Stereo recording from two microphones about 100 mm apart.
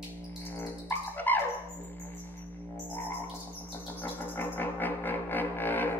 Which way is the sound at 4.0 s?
20° left (ahead or behind).